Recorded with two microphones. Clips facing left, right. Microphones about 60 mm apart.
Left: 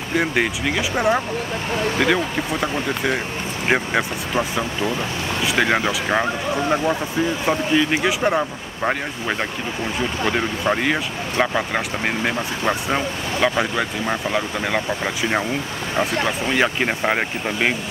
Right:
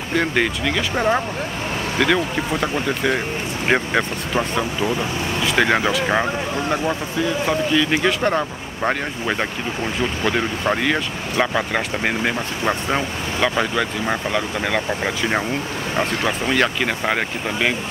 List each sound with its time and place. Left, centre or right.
0.1 s speech: centre
7.4 s speech: centre
8.0 s speech: centre
11.5 s speech: centre
13.4 s speech: centre
14.9 s speech: centre
16.5 s speech: centre